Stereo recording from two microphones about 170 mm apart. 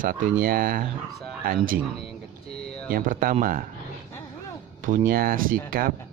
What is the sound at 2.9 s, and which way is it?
Speech, 55° right (ahead or behind).